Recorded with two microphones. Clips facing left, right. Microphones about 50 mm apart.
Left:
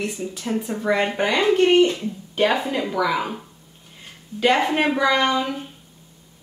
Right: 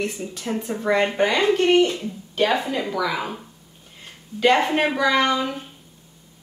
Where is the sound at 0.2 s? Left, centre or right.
Centre.